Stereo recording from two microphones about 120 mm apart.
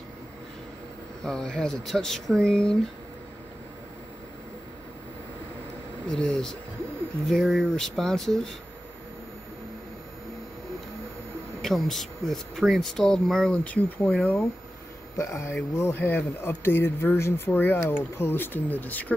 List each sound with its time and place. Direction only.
1.2 s speech: 5° left (ahead or behind)
6.0 s speech: 5° left (ahead or behind)
11.6 s speech: centre (ahead or behind)